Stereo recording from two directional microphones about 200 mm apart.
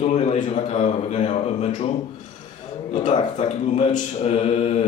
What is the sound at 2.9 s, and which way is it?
A man's voice, 30° left (ahead or behind).